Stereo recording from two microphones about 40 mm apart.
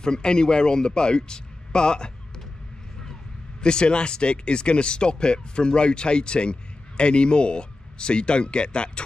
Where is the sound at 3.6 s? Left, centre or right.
Left.